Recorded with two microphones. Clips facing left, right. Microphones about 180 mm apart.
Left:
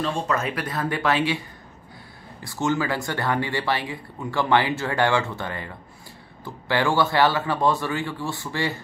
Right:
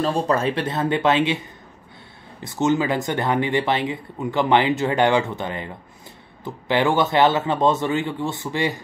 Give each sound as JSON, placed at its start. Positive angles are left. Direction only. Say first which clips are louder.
{"t": 0.0, "sound": "speech", "louder": "right 5 dB", "side_deg": -35}
{"t": 2.4, "sound": "speech", "louder": "right 4 dB", "side_deg": -20}